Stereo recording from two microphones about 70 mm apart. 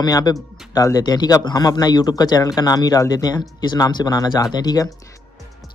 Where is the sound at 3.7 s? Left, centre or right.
Left.